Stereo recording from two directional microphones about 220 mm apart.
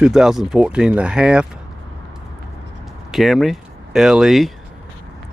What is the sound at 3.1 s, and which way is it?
Speech, centre (ahead or behind).